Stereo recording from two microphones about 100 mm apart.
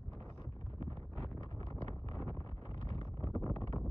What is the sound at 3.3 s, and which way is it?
Wind noise, 35° left (ahead or behind).